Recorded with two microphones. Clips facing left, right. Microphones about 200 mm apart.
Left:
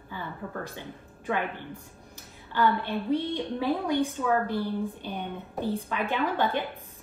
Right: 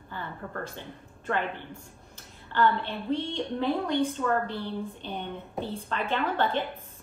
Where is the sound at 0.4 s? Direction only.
5° left (ahead or behind).